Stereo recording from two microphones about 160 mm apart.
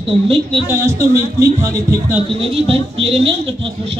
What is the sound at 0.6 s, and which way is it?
Speech, 15° right (ahead or behind).